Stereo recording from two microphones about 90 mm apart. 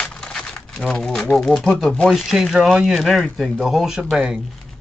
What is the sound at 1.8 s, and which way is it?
Speech, 10° left (ahead or behind).